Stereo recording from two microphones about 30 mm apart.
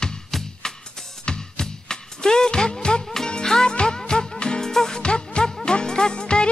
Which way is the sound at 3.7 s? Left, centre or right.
Left.